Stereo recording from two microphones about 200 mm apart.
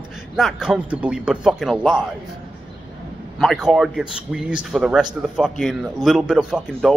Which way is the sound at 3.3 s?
Centre (ahead or behind).